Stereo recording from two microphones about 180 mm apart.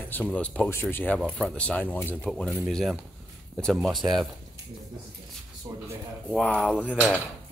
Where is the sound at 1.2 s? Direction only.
Centre (ahead or behind).